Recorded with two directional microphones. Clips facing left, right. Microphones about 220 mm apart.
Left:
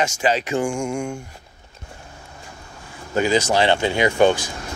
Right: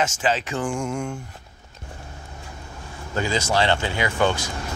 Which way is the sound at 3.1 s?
15° left (ahead or behind).